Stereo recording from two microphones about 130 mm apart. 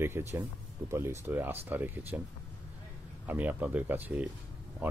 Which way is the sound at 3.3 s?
15° right (ahead or behind).